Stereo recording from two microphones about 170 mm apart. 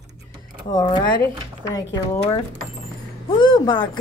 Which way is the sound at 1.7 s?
25° left (ahead or behind).